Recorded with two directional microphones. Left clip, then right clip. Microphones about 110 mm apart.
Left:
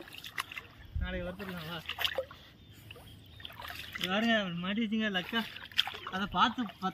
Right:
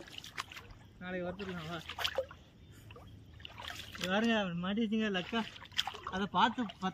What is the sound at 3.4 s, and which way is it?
Boat, 55° left (ahead or behind).